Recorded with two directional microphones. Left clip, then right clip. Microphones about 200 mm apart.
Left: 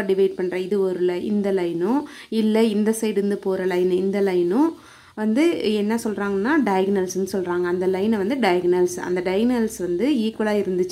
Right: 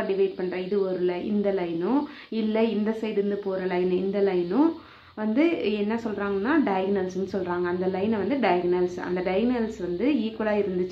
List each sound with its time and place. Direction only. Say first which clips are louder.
0.0 s a woman's voice: left 5 dB; 45° left (ahead or behind)